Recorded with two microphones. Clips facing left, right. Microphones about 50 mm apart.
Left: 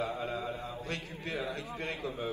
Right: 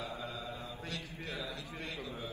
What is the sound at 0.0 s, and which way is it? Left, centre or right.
A man's voice, left.